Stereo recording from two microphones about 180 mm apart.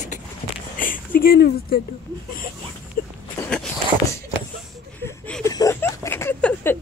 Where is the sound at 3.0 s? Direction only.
55° left (ahead or behind).